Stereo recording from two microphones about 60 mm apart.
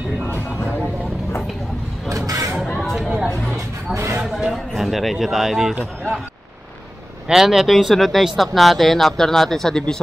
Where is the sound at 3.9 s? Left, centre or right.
Right.